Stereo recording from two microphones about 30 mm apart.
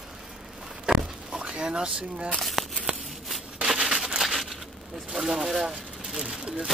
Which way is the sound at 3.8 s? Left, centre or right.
Right.